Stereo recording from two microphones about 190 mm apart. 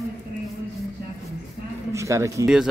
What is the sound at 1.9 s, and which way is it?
Speech, 15° right (ahead or behind).